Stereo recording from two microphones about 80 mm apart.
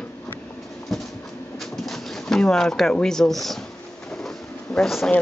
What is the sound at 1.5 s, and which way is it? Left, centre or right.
Pigeon, centre.